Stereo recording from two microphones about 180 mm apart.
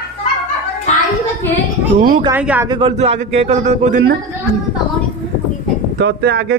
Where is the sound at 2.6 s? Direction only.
25° right (ahead or behind).